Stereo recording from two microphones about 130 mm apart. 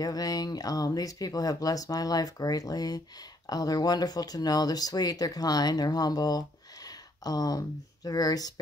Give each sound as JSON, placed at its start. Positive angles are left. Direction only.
{"t": 0.0, "sound": "speech", "side_deg": 30}